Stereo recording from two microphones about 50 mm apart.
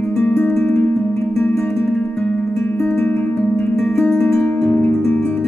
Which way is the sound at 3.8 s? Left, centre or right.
Centre.